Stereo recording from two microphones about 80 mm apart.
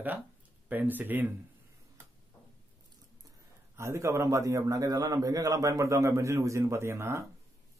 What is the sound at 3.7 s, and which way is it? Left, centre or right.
A man's voice, right.